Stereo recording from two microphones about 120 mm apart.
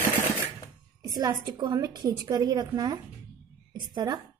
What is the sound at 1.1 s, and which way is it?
A woman's voice, 30° right (ahead or behind).